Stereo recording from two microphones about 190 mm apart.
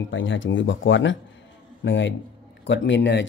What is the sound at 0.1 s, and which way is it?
Speech, 85° left.